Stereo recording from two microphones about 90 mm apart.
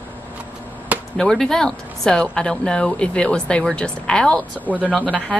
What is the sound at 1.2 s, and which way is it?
A woman's voice, 5° left (ahead or behind).